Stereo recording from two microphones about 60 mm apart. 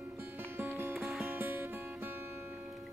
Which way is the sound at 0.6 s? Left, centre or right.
Right.